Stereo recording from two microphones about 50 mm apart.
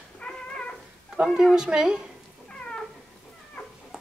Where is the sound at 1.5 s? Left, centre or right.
Centre.